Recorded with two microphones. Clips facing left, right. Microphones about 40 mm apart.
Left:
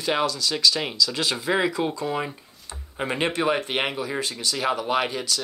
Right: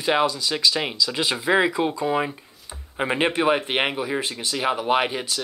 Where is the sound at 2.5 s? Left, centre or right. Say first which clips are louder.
Even; centre.